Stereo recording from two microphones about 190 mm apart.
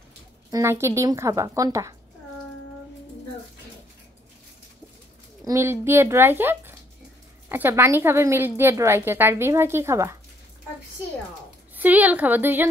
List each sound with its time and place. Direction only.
0.5 s a woman's voice: 15° right (ahead or behind)
5.4 s a woman's voice: 15° right (ahead or behind)
11.7 s a woman's voice: 10° right (ahead or behind)